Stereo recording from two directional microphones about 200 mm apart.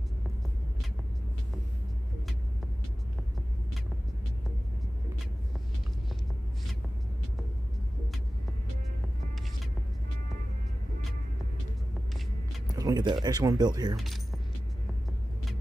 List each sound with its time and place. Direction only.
12.7 s speech: 20° right (ahead or behind)
13.9 s keys jangling: centre (ahead or behind)